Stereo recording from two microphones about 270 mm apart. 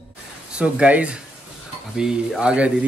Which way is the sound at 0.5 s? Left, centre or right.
Centre.